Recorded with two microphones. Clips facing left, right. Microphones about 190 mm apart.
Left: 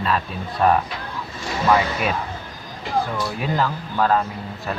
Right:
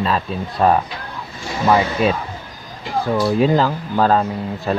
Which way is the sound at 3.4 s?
30° right (ahead or behind).